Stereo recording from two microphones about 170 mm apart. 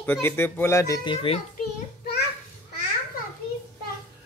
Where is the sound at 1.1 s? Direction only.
30° left (ahead or behind).